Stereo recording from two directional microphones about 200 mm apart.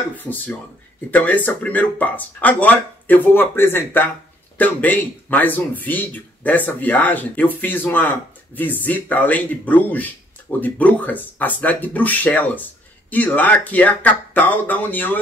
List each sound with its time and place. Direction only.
0.1 s speech: 10° left (ahead or behind)